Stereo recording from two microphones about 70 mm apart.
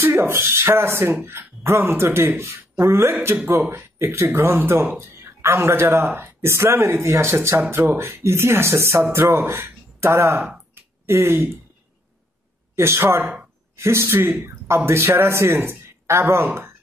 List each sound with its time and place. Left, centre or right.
0.0 s speech: right
10.7 s a sound: right
12.7 s speech: right
13.2 s a woman's voice: centre
13.7 s a man's voice: right